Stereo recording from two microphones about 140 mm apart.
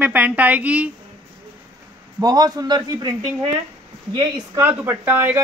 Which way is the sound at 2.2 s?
25° right (ahead or behind).